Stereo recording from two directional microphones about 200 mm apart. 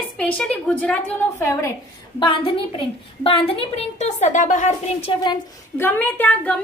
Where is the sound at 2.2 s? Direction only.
25° left (ahead or behind).